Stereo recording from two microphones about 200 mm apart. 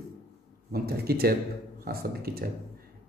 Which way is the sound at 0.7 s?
50° right (ahead or behind).